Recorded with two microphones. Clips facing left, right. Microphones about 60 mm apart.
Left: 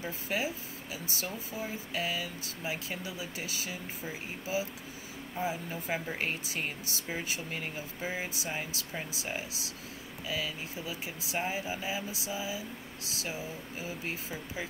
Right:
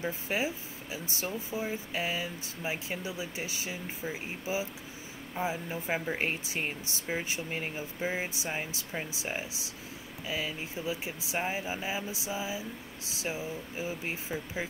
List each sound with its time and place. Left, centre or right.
0.0 s speech: right